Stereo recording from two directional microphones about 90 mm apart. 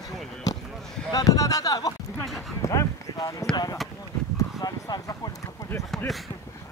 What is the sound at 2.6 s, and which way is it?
Clip-clop, 40° left (ahead or behind).